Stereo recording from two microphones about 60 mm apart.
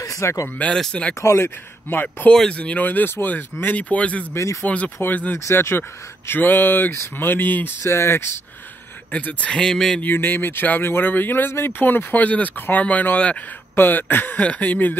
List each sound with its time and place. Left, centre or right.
0.0 s a sound: left
1.2 s speech: left
3.6 s speech: left
4.3 s speech: left
4.6 s speech: left
5.4 s speech: left
7.8 s speech: left
9.1 s speech: left
10.0 s speech: left
13.7 s speech: left
14.4 s speech: left